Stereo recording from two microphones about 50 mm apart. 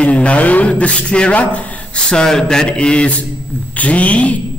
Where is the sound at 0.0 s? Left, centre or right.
Left.